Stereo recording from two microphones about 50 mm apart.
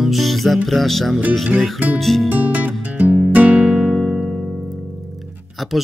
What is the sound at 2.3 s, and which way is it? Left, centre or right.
Music, right.